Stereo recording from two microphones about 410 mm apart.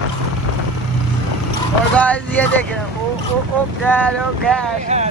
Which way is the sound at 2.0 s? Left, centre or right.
Centre.